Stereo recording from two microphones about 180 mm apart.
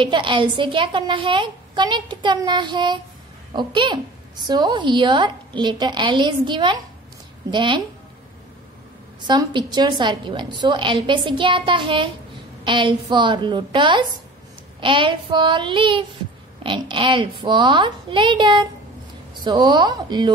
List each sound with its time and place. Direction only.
0.0 s a woman's voice: 25° right (ahead or behind)
9.3 s a woman's voice: 25° right (ahead or behind)